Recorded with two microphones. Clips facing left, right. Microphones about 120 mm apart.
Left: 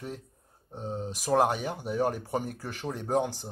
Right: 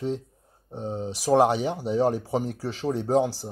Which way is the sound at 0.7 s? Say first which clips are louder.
Right 4 dB; 20° right (ahead or behind).